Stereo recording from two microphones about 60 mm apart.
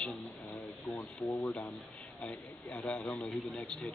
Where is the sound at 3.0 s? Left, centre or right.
Centre.